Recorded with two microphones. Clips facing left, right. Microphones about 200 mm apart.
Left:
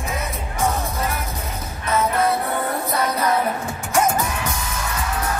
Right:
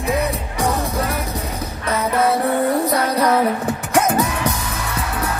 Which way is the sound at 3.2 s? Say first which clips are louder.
Right 4 dB; 65° right (ahead or behind).